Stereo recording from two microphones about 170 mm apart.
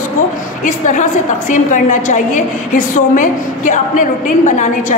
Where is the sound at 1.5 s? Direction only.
45° left (ahead or behind).